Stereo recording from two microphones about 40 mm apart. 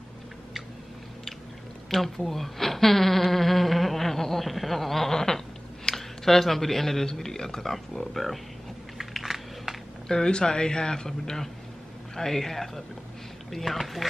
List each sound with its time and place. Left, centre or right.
1.9 s speech: centre
8.9 s a sound: centre
10.0 s speech: centre